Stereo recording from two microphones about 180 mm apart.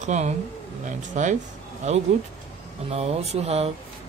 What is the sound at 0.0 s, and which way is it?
Speech, 40° right (ahead or behind).